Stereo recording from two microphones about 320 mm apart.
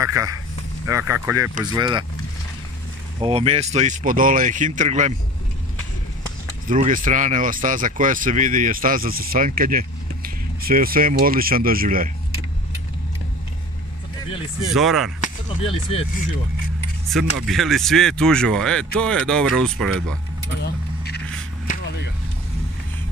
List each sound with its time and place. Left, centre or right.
0.0 s speech: centre
3.2 s speech: centre
6.7 s speech: right
14.7 s speech: centre
15.1 s speech: centre
17.1 s speech: centre
20.6 s keys jangling: left